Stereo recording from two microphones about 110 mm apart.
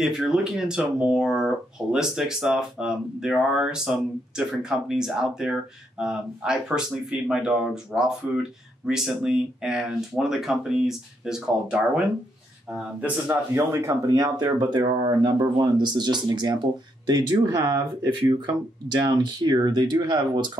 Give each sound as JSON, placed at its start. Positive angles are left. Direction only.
{"t": 0.0, "sound": "speech", "side_deg": -5}
{"t": 13.6, "sound": "speech", "side_deg": -25}